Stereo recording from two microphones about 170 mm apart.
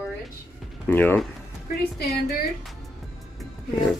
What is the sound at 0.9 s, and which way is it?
Speech, 10° left (ahead or behind).